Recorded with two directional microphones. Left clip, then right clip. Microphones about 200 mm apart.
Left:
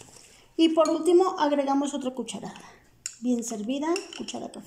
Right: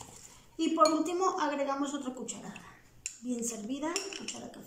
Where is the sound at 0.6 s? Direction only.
50° left (ahead or behind).